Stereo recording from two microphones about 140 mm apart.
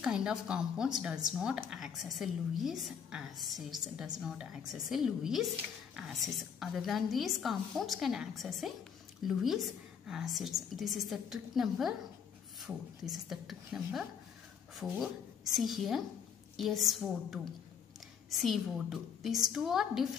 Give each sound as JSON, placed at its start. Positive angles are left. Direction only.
{"t": 0.0, "sound": "speech", "side_deg": -5}